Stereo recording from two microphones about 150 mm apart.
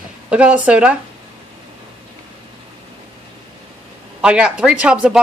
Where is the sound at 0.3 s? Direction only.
10° right (ahead or behind).